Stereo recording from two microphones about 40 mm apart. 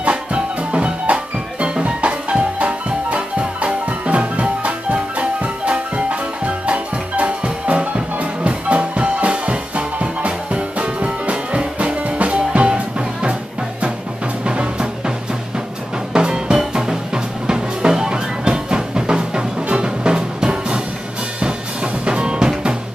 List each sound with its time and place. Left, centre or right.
0.0 s music: right
22.0 s music: right